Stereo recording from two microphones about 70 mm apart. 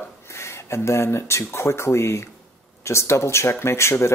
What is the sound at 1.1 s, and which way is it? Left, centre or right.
Speech, left.